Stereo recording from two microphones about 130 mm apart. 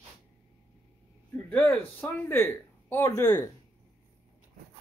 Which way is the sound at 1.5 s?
15° left (ahead or behind).